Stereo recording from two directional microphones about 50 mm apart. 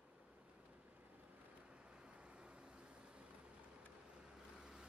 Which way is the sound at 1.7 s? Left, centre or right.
Right.